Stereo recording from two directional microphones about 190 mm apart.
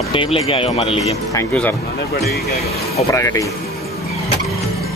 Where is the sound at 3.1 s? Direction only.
15° left (ahead or behind).